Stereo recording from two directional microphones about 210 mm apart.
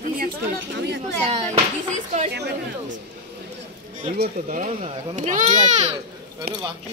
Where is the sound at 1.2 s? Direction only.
30° right (ahead or behind).